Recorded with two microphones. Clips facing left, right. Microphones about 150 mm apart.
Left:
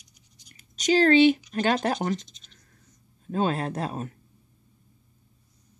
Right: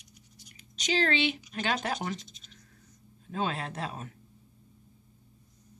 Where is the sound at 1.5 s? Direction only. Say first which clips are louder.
Left 7 dB; 45° left (ahead or behind).